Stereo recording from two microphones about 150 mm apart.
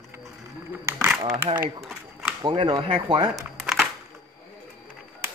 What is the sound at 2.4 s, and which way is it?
Speech, 30° right (ahead or behind).